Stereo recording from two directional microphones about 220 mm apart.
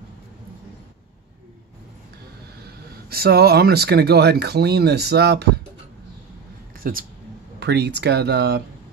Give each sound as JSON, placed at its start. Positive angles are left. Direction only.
{"t": 2.6, "sound": "speech", "side_deg": -45}
{"t": 6.8, "sound": "speech", "side_deg": -40}